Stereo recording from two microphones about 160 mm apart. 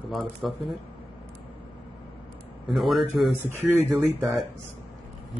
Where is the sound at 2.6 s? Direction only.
Centre (ahead or behind).